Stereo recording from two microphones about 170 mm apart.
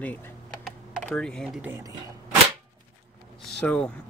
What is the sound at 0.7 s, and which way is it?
Computer keyboard, centre (ahead or behind).